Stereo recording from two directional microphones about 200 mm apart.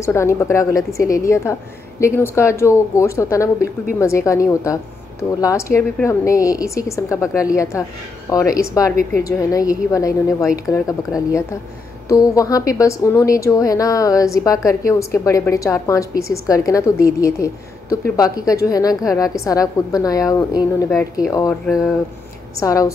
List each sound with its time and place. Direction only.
0.0 s a woman's voice: 15° left (ahead or behind)
21.6 s speech: centre (ahead or behind)
22.6 s a woman's voice: 15° left (ahead or behind)